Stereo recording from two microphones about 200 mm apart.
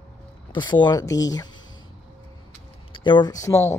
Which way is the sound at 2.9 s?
25° left (ahead or behind).